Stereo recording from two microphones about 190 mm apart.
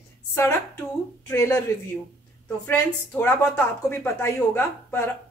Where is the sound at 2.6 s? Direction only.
10° left (ahead or behind).